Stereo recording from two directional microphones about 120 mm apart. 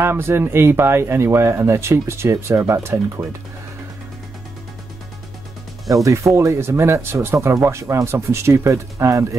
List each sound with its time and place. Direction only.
0.0 s speech: 20° right (ahead or behind)
6.0 s speech: 25° right (ahead or behind)